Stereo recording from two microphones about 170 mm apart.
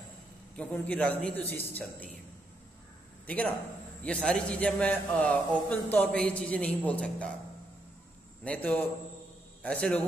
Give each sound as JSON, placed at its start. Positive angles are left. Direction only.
{"t": 0.6, "sound": "a man's voice", "side_deg": 10}
{"t": 3.3, "sound": "a man's voice", "side_deg": 10}
{"t": 8.5, "sound": "a man's voice", "side_deg": 10}